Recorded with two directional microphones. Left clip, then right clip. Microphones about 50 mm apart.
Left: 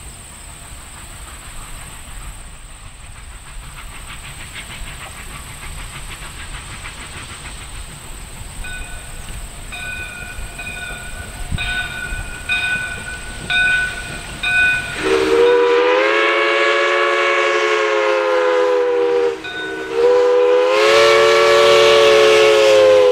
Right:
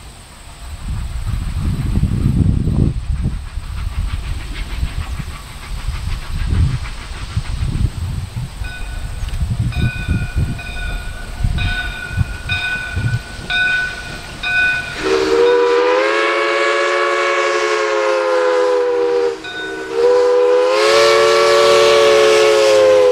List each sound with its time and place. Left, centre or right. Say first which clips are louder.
11.5 s train: left 1 dB; right